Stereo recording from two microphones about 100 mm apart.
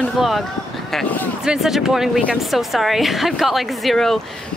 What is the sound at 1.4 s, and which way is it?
A woman's voice, 5° right (ahead or behind).